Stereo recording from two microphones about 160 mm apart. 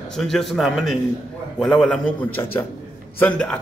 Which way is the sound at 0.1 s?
Centre (ahead or behind).